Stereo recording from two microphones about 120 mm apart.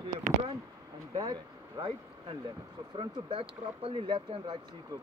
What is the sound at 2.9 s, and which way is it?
Speech, 45° right (ahead or behind).